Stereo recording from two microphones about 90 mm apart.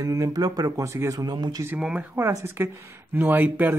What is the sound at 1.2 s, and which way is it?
Speech, 50° right (ahead or behind).